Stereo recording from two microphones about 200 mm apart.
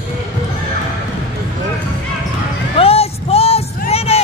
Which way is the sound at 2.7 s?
30° left (ahead or behind).